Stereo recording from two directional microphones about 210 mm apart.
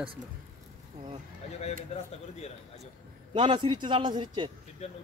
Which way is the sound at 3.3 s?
25° right (ahead or behind).